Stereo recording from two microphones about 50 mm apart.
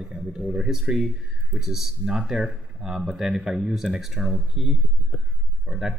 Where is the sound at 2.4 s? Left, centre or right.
Right.